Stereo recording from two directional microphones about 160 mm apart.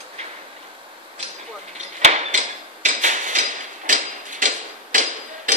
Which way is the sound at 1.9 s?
45° right (ahead or behind).